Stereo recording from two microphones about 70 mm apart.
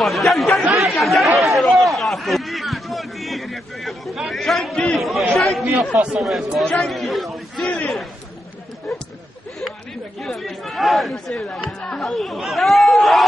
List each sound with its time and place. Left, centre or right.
0.0 s chatter: centre
5.9 s speech: centre
6.6 s speech: centre
6.9 s a man's voice: centre
7.6 s a sound: centre
10.2 s speech: centre